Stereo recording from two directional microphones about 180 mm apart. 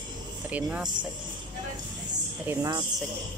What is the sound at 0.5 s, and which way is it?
Speech, 5° right (ahead or behind).